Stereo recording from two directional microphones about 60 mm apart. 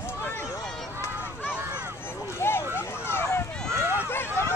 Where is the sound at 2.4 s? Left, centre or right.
Left.